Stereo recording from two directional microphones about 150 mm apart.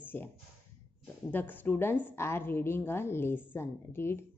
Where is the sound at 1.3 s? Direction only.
10° left (ahead or behind).